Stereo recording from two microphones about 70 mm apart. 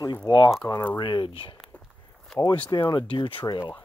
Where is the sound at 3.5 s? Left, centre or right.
Left.